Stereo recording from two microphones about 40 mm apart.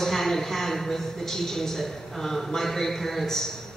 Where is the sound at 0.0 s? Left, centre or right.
Centre.